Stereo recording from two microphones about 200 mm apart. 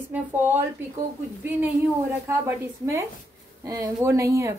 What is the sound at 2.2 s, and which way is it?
A woman's voice, 10° right (ahead or behind).